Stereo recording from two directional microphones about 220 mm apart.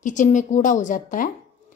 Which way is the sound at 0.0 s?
35° left (ahead or behind).